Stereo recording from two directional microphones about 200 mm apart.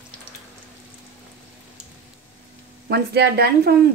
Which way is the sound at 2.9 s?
50° right (ahead or behind).